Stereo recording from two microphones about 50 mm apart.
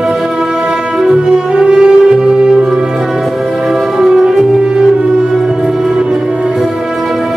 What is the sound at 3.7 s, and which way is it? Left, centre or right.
Music, centre.